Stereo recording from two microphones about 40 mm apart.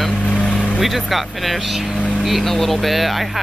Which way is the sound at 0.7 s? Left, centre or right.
Centre.